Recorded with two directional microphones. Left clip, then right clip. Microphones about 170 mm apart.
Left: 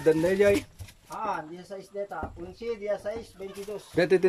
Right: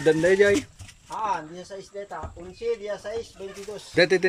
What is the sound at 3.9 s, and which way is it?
Speech, 10° left (ahead or behind).